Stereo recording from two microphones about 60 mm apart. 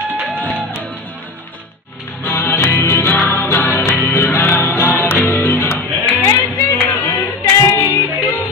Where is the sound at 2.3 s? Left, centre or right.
Left.